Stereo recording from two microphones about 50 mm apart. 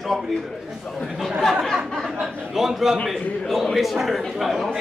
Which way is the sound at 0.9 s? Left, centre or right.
Centre.